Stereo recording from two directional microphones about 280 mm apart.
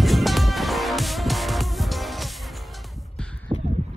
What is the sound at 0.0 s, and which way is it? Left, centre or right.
Music, centre.